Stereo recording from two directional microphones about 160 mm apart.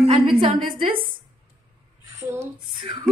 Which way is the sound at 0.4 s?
35° right (ahead or behind).